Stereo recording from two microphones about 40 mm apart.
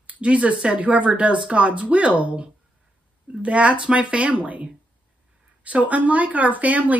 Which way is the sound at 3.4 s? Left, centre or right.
Right.